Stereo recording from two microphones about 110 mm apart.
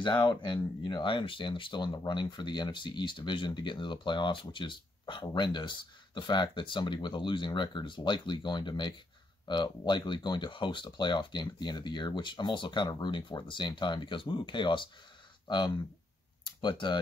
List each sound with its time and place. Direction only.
0.0 s speech: 45° left (ahead or behind)